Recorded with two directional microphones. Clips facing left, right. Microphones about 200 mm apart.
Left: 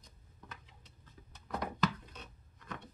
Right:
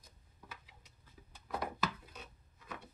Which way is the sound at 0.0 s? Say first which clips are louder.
Left 2 dB; 10° right (ahead or behind).